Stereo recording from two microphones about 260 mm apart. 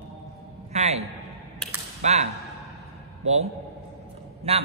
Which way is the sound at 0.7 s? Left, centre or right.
Right.